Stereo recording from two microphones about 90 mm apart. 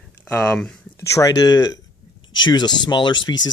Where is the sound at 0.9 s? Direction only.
40° left (ahead or behind); by 3.4 s 60° left (ahead or behind).